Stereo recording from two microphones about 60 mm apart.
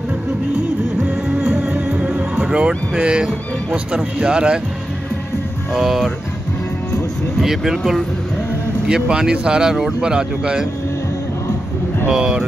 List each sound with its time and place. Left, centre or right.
1.3 s music: centre
2.4 s speech: centre
5.7 s speech: centre
7.4 s speech: centre
12.1 s speech: centre